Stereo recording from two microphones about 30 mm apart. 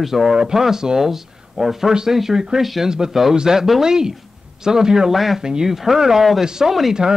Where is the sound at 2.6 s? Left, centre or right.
Centre.